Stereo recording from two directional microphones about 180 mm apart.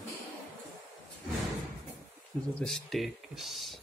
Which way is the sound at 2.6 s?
Centre (ahead or behind).